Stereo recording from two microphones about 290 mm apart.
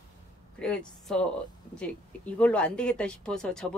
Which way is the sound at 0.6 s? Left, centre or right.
Centre.